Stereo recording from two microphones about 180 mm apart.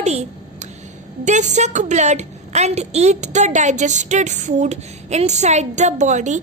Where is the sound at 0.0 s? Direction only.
40° right (ahead or behind).